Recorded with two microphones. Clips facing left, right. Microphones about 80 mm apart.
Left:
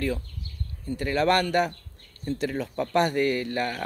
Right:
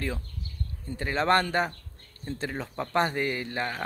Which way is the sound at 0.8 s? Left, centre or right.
Right.